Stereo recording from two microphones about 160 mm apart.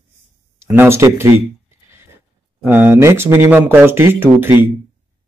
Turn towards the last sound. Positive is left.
turn(degrees=-15)  # may be behind; listen again after turning